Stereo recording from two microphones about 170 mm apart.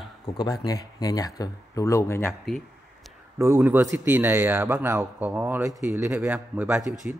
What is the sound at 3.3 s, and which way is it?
Speech, 15° right (ahead or behind).